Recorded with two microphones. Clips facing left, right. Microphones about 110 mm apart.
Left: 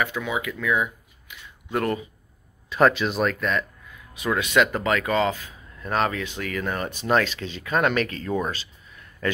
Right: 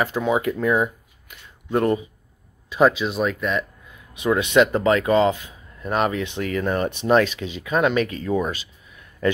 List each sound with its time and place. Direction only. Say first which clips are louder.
0.0 s speech: right 6 dB; 35° right (ahead or behind)
1.7 s speech: right 5 dB; 25° right (ahead or behind)
2.7 s speech: right 2 dB; 5° right (ahead or behind)
3.9 s speech: right 5 dB; 25° right (ahead or behind)
7.4 s speech: right 2 dB; 10° right (ahead or behind)
8.5 s a sound: right 2 dB; 15° right (ahead or behind)